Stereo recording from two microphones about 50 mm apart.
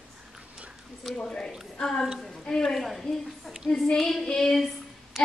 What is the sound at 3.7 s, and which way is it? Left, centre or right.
Child singing, centre.